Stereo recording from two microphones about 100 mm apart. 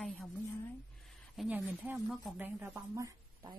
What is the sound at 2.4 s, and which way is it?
Speech, 30° right (ahead or behind).